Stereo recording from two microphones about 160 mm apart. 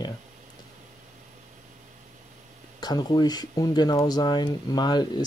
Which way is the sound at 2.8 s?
25° left (ahead or behind).